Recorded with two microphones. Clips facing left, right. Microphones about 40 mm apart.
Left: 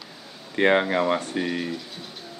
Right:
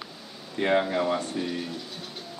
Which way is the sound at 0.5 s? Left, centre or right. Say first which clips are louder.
Left 4 dB; left.